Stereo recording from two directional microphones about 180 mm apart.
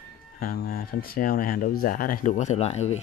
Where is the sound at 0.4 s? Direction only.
60° left (ahead or behind).